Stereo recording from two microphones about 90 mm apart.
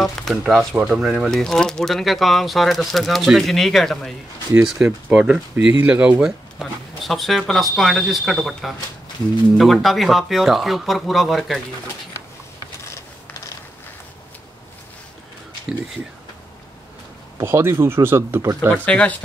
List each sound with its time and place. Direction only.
0.0 s speech: 5° left (ahead or behind)
1.3 s speech: 10° left (ahead or behind)
4.8 s speech: 25° right (ahead or behind)
5.1 s speech: 10° right (ahead or behind)
6.6 s speech: centre (ahead or behind)
17.4 s speech: 30° right (ahead or behind)
18.7 s speech: 15° left (ahead or behind)